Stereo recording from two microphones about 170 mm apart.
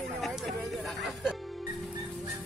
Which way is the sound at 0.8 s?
Centre (ahead or behind).